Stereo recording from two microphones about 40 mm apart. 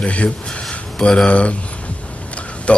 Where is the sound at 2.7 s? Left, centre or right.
Left.